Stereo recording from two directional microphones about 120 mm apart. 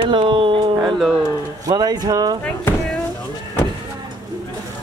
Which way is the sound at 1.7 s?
35° right (ahead or behind).